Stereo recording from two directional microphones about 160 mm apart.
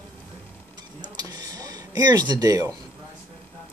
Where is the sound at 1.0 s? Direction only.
25° right (ahead or behind).